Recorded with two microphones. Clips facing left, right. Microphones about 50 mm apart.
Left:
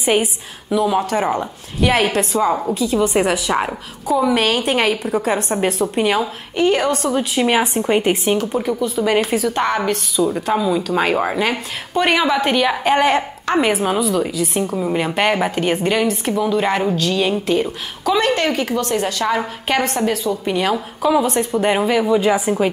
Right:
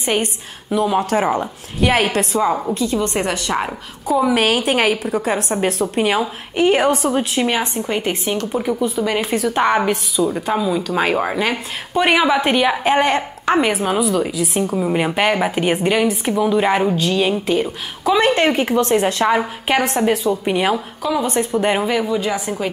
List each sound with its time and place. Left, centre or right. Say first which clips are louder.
0.0 s a woman's voice: left 3 dB; centre
6.5 s a woman's voice: right 2 dB; right
7.4 s a woman's voice: left 3 dB; centre
9.6 s a woman's voice: right 2 dB; centre
10.2 s a woman's voice: left 1 dB; centre
18.3 s a woman's voice: right 2 dB; right
21.0 s a woman's voice: left 6 dB; centre
21.3 s a woman's voice: even; centre
22.0 s a woman's voice: left 5 dB; centre